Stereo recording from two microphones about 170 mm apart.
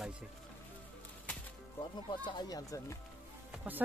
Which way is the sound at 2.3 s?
20° left (ahead or behind).